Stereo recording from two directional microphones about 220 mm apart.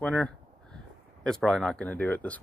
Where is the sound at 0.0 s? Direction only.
5° left (ahead or behind).